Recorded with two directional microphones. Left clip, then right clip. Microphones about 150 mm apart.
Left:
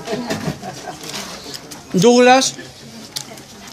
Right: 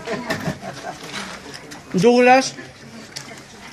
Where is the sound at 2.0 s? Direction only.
10° left (ahead or behind).